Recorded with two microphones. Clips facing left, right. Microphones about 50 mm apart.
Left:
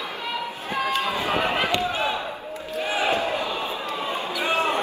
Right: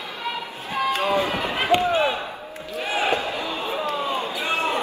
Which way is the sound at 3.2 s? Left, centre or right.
Left.